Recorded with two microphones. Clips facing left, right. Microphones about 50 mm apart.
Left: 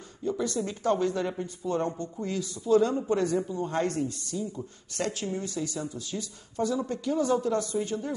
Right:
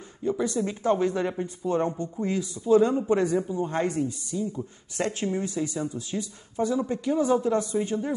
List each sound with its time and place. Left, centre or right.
0.2 s speech: centre
4.9 s speech: right